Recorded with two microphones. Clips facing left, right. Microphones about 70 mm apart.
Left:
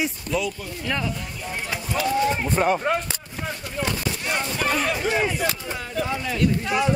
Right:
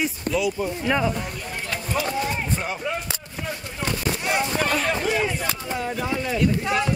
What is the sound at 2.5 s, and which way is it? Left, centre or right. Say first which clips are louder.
Speech: left 6 dB; left.